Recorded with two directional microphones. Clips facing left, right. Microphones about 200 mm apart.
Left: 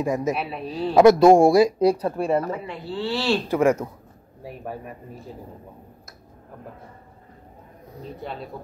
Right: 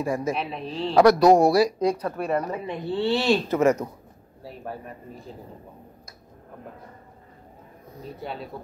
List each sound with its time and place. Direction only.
0.0 s speech: 20° left (ahead or behind)
0.3 s a man's voice: 5° left (ahead or behind)
0.9 s speech: 25° left (ahead or behind)
2.4 s speech: 20° right (ahead or behind)
3.4 s a man's voice: 10° left (ahead or behind)
8.2 s speech: centre (ahead or behind)